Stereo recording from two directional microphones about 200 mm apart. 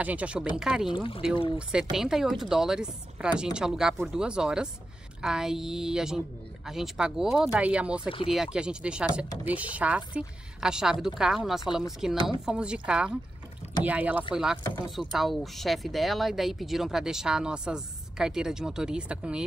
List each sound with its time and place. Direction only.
0.0 s speech: 5° right (ahead or behind)
0.9 s speech: 25° left (ahead or behind)
1.6 s speech: 5° right (ahead or behind)